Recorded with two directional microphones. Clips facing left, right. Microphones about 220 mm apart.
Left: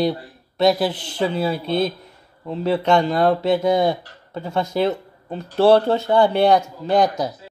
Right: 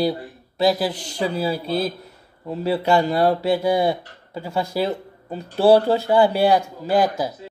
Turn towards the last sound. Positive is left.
turn(degrees=-5)  # may be behind; listen again after turning